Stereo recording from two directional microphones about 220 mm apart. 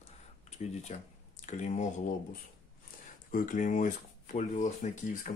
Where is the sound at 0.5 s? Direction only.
30° left (ahead or behind).